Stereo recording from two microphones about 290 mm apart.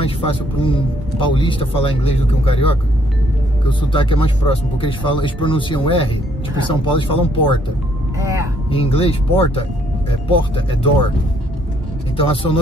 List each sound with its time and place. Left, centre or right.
0.0 s speech: centre
8.2 s speech: centre
8.6 s speech: centre
12.2 s speech: centre